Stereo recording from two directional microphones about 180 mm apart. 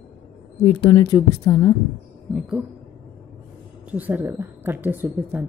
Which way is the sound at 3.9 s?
10° right (ahead or behind).